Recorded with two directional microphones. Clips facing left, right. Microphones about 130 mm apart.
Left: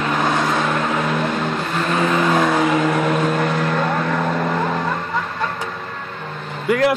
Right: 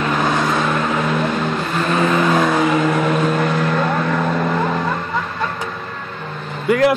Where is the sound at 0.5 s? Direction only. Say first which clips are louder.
Right 1 dB; 60° left (ahead or behind).